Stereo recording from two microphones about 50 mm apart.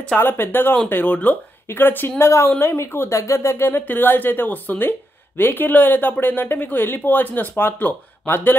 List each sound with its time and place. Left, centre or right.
0.2 s speech: left
2.6 s speech: left
3.1 s speech: left
3.6 s speech: left